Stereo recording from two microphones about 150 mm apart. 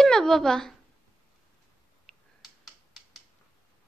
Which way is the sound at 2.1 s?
Centre (ahead or behind).